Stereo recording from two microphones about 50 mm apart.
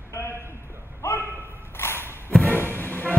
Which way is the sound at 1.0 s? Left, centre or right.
Left.